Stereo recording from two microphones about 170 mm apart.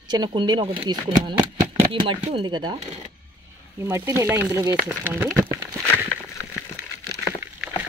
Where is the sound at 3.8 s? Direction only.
15° right (ahead or behind).